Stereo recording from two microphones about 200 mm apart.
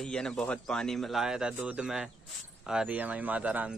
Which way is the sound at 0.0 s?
5° left (ahead or behind).